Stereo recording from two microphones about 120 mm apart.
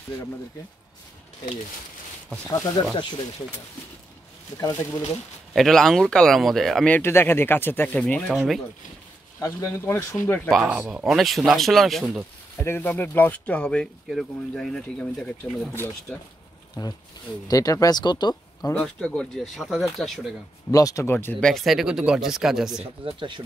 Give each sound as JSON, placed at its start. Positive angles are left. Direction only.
{"t": 2.8, "sound": "speech", "side_deg": 40}
{"t": 4.6, "sound": "speech", "side_deg": 25}
{"t": 5.5, "sound": "speech", "side_deg": 0}
{"t": 6.9, "sound": "speech", "side_deg": 20}
{"t": 9.4, "sound": "speech", "side_deg": 25}
{"t": 10.5, "sound": "speech", "side_deg": 0}
{"t": 10.8, "sound": "speech", "side_deg": -10}
{"t": 11.1, "sound": "speech", "side_deg": 0}
{"t": 12.5, "sound": "speech", "side_deg": 15}
{"t": 17.5, "sound": "speech", "side_deg": 30}
{"t": 18.7, "sound": "speech", "side_deg": 10}
{"t": 20.7, "sound": "speech", "side_deg": 30}
{"t": 21.5, "sound": "speech", "side_deg": 0}
{"t": 23.0, "sound": "speech", "side_deg": -40}